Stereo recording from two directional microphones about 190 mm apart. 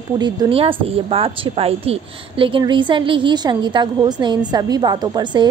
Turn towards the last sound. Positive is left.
turn(degrees=-20)  # may be behind; listen again after turning